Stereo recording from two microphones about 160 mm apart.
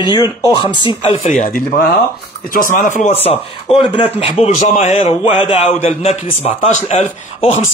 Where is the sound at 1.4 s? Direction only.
55° left (ahead or behind).